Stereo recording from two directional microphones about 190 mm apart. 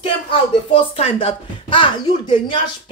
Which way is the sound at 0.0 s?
30° left (ahead or behind).